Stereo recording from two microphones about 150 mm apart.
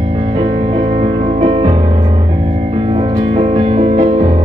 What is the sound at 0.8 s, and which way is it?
Music, 40° right (ahead or behind).